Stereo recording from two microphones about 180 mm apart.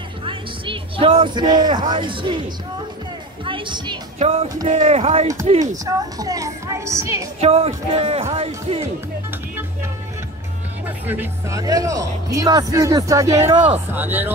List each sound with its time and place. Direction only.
0.2 s speech: 30° right (ahead or behind)
3.4 s a woman's voice: 25° right (ahead or behind)
4.2 s speech: 35° right (ahead or behind)
5.9 s speech: 20° right (ahead or behind)
7.3 s speech: 35° right (ahead or behind)
11.1 s speech: 15° right (ahead or behind)
13.5 s speech: 40° right (ahead or behind)
13.9 s speech: 10° right (ahead or behind)